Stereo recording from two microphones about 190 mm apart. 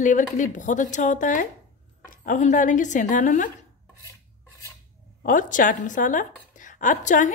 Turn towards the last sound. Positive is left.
turn(degrees=40)  # may be behind; listen again after turning